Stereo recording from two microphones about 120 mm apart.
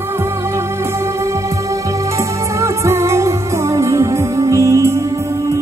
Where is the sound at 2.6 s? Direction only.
25° right (ahead or behind).